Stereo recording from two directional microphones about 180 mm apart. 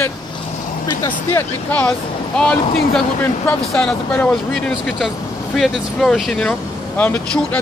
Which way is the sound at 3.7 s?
5° left (ahead or behind).